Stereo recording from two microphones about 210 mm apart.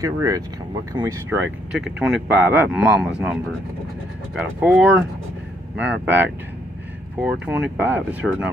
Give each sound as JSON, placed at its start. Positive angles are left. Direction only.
{"t": 0.0, "sound": "speech", "side_deg": -15}
{"t": 1.7, "sound": "speech", "side_deg": -5}
{"t": 4.6, "sound": "speech", "side_deg": -5}